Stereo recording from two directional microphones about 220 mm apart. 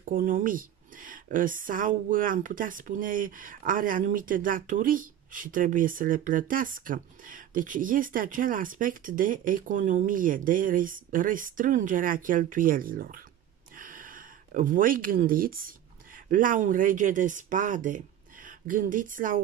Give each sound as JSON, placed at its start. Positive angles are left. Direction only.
{"t": 0.1, "sound": "speech", "side_deg": -40}
{"t": 13.7, "sound": "a sound", "side_deg": -40}
{"t": 16.3, "sound": "speech", "side_deg": -40}